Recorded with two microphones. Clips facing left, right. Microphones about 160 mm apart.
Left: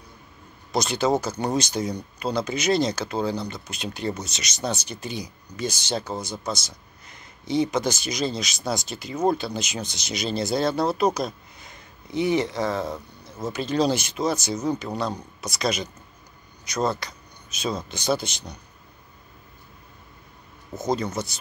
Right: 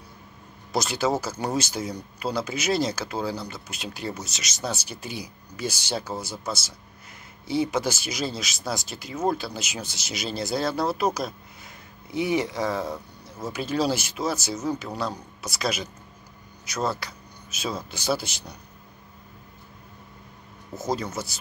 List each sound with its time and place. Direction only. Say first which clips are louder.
0.7 s speech: left 2 dB; 5° right (ahead or behind)
20.7 s speech: left 3 dB; 5° right (ahead or behind)